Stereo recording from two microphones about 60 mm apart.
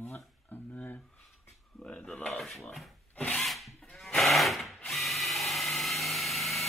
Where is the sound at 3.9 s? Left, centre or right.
Centre.